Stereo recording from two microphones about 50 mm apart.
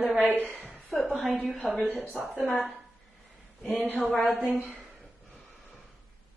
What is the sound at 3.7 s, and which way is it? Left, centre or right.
Speech, left.